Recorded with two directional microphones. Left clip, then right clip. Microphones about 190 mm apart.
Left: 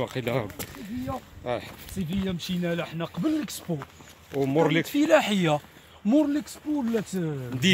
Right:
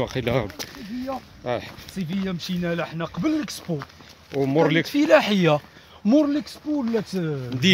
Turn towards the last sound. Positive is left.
turn(degrees=-25)  # may be behind; listen again after turning